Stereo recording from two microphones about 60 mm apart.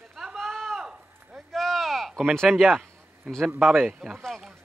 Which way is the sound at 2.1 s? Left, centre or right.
Centre.